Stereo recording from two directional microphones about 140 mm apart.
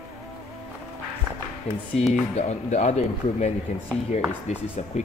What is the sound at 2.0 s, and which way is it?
Speech, 50° left (ahead or behind).